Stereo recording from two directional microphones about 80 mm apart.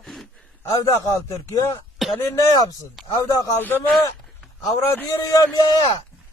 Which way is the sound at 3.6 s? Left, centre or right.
Left.